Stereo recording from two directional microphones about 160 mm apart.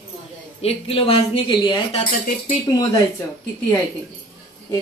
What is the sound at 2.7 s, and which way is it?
Speech, 25° left (ahead or behind).